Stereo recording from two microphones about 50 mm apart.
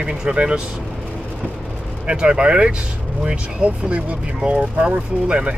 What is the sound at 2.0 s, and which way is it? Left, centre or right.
Speech, right.